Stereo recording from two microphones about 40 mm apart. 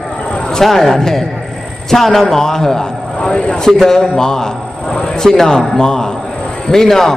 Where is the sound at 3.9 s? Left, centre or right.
Centre.